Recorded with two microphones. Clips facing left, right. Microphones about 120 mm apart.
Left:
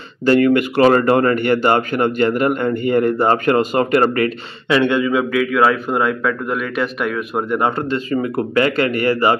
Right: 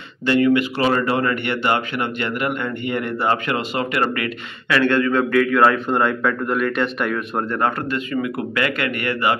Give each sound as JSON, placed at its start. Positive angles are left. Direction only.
{"t": 0.2, "sound": "a man's voice", "side_deg": 45}
{"t": 4.6, "sound": "speech", "side_deg": 20}
{"t": 5.3, "sound": "speech", "side_deg": 5}
{"t": 7.4, "sound": "speech", "side_deg": 15}
{"t": 7.7, "sound": "a man's voice", "side_deg": 30}